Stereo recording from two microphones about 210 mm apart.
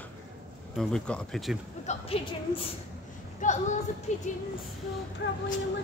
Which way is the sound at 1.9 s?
25° left (ahead or behind).